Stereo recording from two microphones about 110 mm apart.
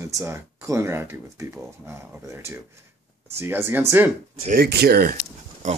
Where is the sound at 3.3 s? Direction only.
20° right (ahead or behind).